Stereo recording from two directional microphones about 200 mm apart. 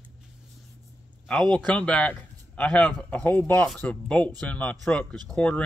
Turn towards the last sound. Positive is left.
turn(degrees=5)  # may be behind; listen again after turning